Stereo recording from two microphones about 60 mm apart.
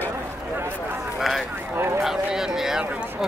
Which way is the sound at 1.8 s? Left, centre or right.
Right.